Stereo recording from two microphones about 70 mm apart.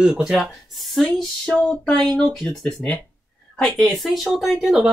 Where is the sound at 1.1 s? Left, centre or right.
Centre.